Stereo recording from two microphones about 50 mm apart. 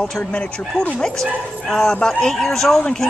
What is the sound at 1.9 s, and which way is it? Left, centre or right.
Speech, left.